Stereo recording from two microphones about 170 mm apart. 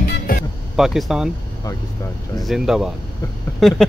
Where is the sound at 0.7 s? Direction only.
Centre (ahead or behind).